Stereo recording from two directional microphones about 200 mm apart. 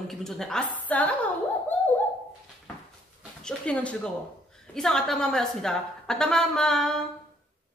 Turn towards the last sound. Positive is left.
turn(degrees=0)  # may be behind; listen again after turning